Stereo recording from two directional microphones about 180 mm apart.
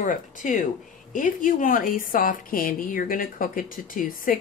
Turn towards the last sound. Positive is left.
turn(degrees=50)  # may be behind; listen again after turning